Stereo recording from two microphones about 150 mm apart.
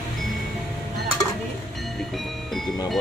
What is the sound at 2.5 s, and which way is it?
Music, centre (ahead or behind).